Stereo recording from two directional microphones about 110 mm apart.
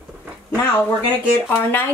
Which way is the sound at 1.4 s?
20° left (ahead or behind).